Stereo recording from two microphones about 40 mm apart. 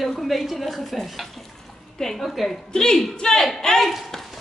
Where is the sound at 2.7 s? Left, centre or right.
Centre.